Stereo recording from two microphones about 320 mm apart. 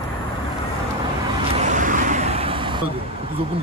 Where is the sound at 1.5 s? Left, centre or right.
Right.